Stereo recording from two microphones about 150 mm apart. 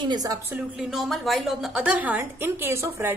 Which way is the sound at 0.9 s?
Centre (ahead or behind).